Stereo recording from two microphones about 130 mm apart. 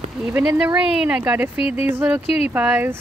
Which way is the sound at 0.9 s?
10° right (ahead or behind).